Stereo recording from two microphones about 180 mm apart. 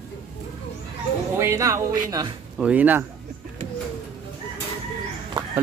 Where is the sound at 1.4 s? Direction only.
15° right (ahead or behind).